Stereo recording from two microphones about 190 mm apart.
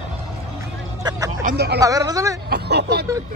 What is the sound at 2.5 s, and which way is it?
Speech, 60° right (ahead or behind).